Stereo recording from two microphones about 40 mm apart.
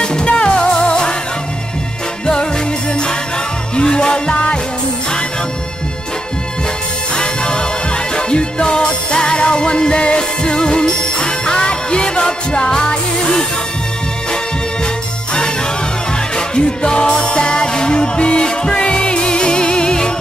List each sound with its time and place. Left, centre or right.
0.0 s music: left
2.9 s music: left
7.2 s music: left
16.3 s music: left